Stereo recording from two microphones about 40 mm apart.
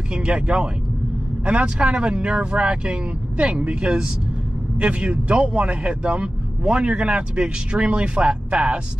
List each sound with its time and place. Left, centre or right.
0.1 s a man's voice: right